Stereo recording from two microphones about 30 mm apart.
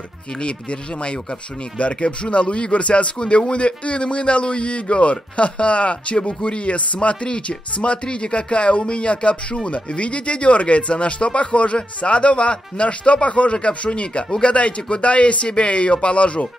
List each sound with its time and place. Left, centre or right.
0.4 s speech: left